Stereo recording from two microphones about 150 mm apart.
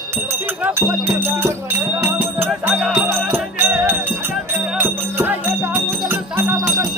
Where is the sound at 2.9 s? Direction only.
10° right (ahead or behind).